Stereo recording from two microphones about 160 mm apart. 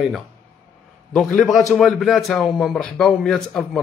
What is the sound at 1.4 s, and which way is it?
A man's voice, centre (ahead or behind).